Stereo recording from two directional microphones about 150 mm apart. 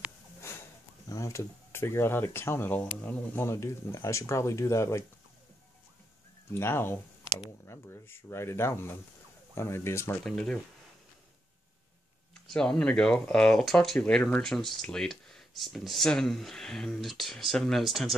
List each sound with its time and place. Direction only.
1.0 s speech: 20° left (ahead or behind)
6.5 s speech: 15° left (ahead or behind)
10.2 s speech: 5° left (ahead or behind)
12.4 s speech: 5° left (ahead or behind)